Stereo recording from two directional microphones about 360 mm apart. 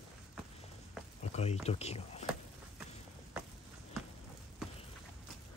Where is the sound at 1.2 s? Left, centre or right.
Centre.